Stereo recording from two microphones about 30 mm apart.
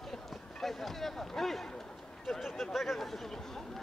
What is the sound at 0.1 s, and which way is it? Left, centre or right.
Run, centre.